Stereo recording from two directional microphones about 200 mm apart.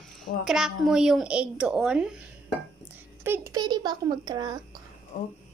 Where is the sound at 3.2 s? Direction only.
10° right (ahead or behind).